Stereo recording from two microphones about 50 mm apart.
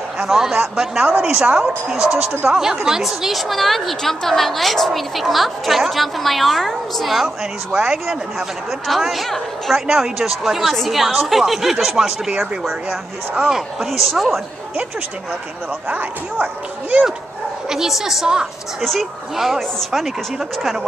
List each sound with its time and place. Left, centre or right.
0.2 s a woman's voice: centre
7.2 s speech: centre
13.5 s speech: centre
15.9 s a woman's voice: right
17.6 s speech: centre
18.8 s speech: centre